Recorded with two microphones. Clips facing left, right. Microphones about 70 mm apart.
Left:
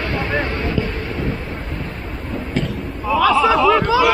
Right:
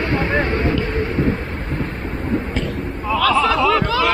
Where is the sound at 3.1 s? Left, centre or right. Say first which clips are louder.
Left 2 dB; centre.